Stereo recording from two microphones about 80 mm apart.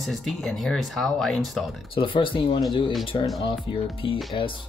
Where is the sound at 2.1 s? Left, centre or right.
Left.